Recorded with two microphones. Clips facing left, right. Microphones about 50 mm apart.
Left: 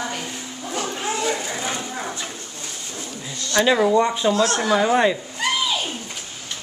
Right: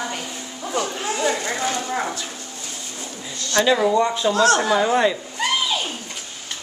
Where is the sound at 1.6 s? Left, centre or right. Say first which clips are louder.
Right 3 dB; centre.